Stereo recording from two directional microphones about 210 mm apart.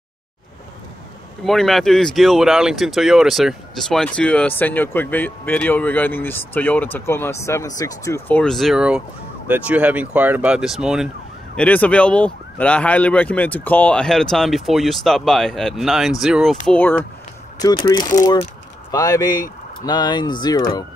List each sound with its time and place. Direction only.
1.4 s speech: centre (ahead or behind)
17.6 s speech: 20° left (ahead or behind)